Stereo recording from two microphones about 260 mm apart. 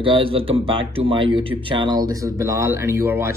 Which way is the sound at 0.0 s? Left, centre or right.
Centre.